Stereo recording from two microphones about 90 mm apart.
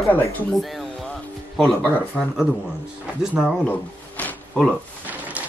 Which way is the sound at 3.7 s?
20° left (ahead or behind).